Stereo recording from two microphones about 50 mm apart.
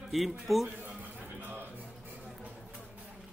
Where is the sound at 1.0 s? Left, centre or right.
Right.